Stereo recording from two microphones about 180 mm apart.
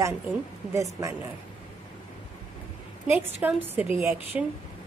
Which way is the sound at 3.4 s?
10° right (ahead or behind).